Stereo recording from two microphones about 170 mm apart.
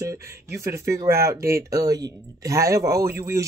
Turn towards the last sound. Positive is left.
turn(degrees=-15)  # may be behind; listen again after turning